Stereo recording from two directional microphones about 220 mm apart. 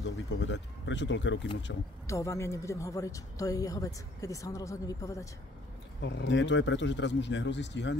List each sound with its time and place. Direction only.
0.0 s speech: 55° left (ahead or behind)
2.0 s speech: 15° left (ahead or behind)
5.9 s speech: 55° left (ahead or behind)